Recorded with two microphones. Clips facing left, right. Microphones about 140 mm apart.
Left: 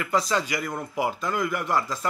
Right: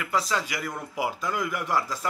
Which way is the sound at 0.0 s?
5° right (ahead or behind).